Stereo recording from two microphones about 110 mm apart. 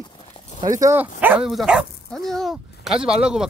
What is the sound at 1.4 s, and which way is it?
Speech, 5° right (ahead or behind).